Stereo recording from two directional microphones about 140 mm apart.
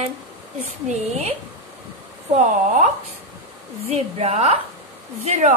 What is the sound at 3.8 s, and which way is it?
Speech, 50° right (ahead or behind).